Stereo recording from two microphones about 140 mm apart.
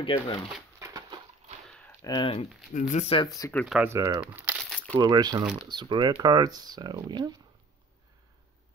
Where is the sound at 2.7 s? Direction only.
60° left (ahead or behind).